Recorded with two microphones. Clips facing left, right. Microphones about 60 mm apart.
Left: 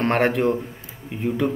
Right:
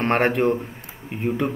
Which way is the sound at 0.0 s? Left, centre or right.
Right.